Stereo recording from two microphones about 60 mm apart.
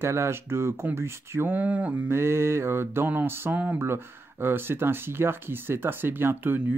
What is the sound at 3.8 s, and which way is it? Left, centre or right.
Speech, right.